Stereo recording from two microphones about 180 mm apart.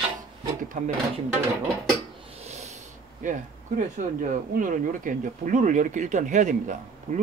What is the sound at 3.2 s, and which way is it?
Speech, 45° right (ahead or behind).